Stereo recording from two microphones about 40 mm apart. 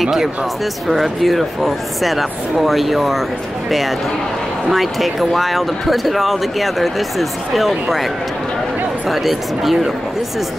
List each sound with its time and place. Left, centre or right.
0.0 s speech: centre
4.6 s speech: centre
9.1 s speech: centre